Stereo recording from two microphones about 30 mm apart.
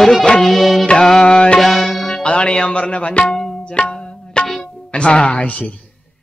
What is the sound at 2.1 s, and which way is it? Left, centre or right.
Music, left.